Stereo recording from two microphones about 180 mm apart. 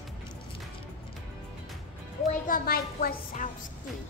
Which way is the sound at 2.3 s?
50° left (ahead or behind).